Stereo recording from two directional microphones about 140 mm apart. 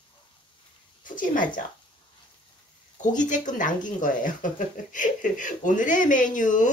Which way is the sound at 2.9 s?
65° left (ahead or behind).